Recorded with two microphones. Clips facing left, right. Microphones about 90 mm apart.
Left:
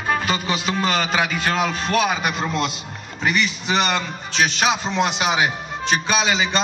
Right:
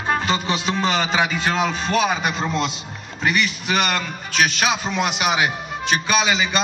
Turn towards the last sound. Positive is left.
turn(degrees=-5)  # may be behind; listen again after turning